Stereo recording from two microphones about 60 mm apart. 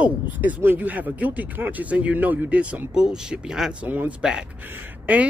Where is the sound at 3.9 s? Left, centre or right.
Right.